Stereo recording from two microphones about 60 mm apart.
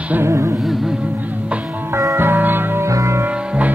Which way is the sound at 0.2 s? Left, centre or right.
Right.